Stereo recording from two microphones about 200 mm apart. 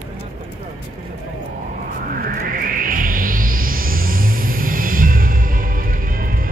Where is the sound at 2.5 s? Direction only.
45° right (ahead or behind).